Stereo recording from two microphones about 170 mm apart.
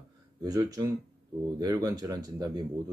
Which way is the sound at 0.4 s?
25° right (ahead or behind).